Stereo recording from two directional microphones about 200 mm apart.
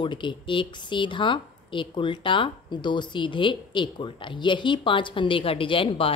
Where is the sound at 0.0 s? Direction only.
25° left (ahead or behind).